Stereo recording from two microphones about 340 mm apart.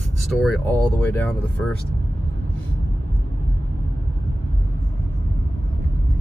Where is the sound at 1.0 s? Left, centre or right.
Centre.